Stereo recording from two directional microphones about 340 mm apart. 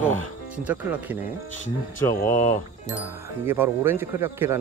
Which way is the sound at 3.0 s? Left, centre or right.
Centre.